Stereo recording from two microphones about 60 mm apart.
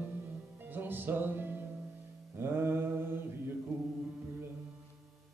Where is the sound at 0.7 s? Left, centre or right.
Right.